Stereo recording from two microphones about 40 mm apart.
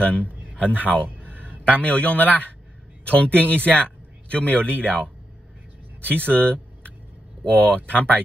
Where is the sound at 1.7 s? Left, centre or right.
Left.